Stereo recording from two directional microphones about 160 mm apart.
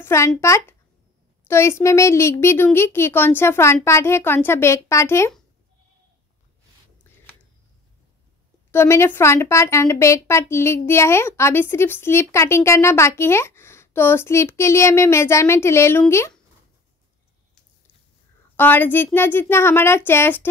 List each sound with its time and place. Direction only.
0.0 s a child's voice: 15° left (ahead or behind)
8.7 s a woman's voice: 15° left (ahead or behind)
18.6 s a woman's voice: 10° left (ahead or behind)